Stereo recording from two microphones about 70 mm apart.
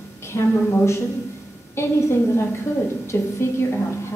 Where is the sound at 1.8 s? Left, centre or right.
Left.